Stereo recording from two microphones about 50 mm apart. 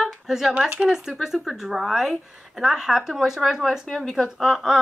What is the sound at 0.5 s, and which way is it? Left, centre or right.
Speech, centre.